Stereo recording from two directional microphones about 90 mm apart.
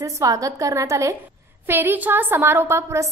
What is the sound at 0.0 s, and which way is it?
A woman's voice, 40° right (ahead or behind).